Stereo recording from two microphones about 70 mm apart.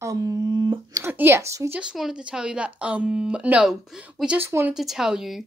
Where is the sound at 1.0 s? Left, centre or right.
Right.